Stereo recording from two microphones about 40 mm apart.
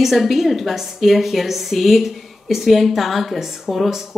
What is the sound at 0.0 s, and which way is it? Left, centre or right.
A woman's voice, centre.